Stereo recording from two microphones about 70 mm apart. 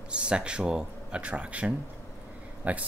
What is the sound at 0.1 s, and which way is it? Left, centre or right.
Speech, centre.